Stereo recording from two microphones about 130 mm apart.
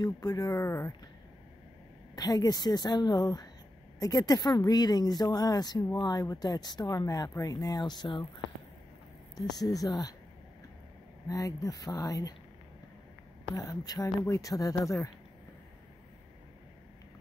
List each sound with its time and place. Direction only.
0.0 s speech: 30° left (ahead or behind)
2.1 s speech: 30° left (ahead or behind)
9.6 s speech: 30° left (ahead or behind)
11.2 s speech: 25° left (ahead or behind)
13.6 s speech: 25° left (ahead or behind)